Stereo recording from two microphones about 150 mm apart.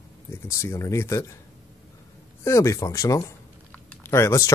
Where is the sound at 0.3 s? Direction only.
20° left (ahead or behind).